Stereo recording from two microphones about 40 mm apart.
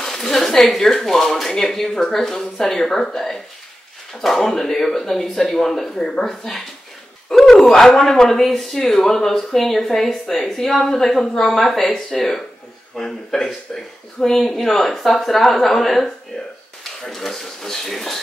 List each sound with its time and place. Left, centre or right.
0.0 s speech: centre